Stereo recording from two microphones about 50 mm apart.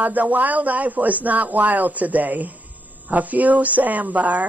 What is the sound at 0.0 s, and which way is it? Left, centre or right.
Speech, right.